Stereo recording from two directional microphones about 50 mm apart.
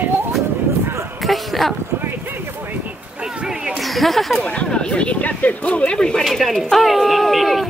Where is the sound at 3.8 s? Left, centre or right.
Centre.